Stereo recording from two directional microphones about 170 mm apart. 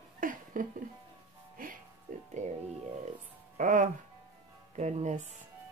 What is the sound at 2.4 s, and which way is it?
Speech, 45° right (ahead or behind).